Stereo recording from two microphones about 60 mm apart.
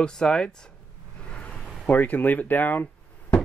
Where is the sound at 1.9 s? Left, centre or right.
Left.